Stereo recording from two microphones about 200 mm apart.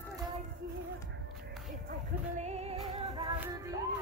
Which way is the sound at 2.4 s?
30° right (ahead or behind).